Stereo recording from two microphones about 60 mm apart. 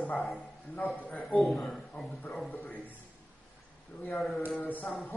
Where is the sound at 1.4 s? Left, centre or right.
Centre.